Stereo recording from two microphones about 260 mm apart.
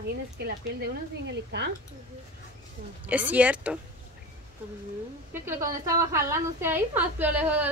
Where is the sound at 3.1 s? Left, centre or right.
Centre.